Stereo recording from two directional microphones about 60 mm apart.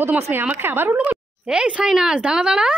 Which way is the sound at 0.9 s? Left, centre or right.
Right.